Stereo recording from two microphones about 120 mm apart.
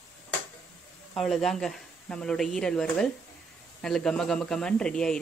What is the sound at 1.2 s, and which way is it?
Speech, centre (ahead or behind).